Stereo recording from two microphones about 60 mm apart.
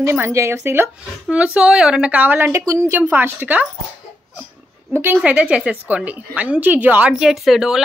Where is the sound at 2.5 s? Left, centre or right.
Right.